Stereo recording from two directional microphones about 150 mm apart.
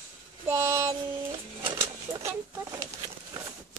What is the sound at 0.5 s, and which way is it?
Child singing, 15° right (ahead or behind).